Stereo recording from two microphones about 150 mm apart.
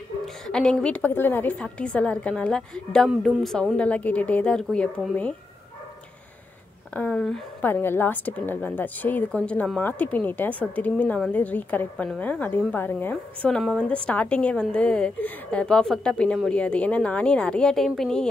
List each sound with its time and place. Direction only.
0.2 s a woman's voice: 5° left (ahead or behind)
6.9 s a woman's voice: 10° left (ahead or behind)
7.7 s a woman's voice: 15° left (ahead or behind)